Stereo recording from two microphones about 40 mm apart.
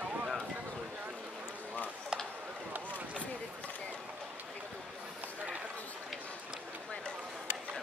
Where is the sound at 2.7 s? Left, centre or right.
Right.